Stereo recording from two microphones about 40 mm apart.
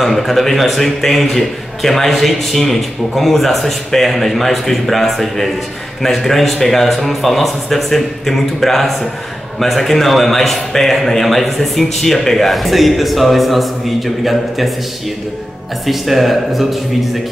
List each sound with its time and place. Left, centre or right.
0.0 s a man's voice: centre
15.8 s a man's voice: centre